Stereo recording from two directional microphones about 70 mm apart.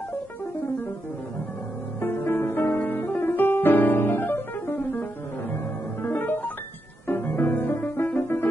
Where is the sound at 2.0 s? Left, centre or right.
Left.